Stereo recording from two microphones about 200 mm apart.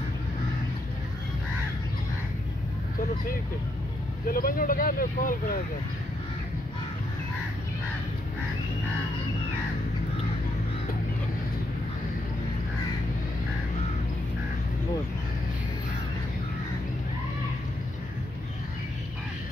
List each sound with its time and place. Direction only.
4.3 s speech: 45° left (ahead or behind)